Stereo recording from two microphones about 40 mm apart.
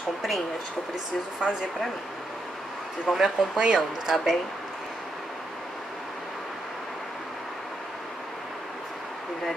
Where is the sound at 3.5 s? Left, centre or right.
Centre.